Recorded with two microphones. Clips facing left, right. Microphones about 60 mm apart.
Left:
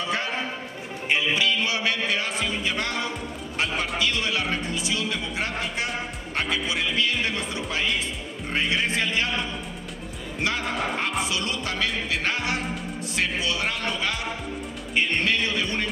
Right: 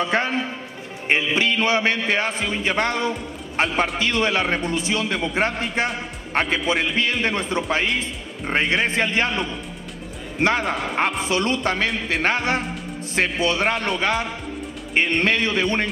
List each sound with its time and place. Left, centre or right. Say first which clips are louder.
0.0 s a sound: right 6 dB; right
1.0 s a man's voice: right 3 dB; right
10.4 s speech: right 6 dB; right